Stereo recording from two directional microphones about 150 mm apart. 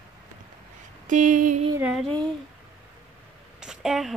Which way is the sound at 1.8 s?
5° right (ahead or behind).